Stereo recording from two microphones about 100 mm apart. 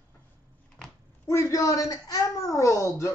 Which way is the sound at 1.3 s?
30° left (ahead or behind).